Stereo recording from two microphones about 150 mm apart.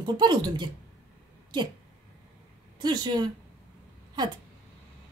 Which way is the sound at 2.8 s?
30° right (ahead or behind).